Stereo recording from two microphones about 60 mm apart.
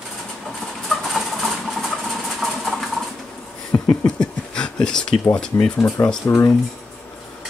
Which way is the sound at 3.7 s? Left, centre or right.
Left.